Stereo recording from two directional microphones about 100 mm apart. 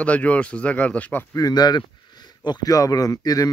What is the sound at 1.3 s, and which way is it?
Speech, 40° left (ahead or behind).